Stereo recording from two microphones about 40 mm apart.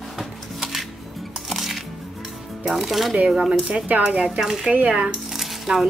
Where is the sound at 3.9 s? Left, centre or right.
Right.